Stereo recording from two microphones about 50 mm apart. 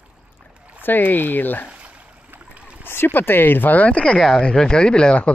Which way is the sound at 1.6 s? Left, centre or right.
Right.